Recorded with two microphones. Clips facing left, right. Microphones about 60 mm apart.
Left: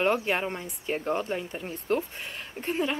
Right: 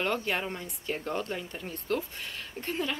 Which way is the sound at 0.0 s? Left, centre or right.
Centre.